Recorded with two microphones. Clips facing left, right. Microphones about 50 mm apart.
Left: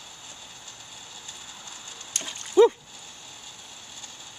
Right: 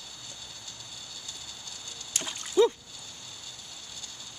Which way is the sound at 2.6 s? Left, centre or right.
Centre.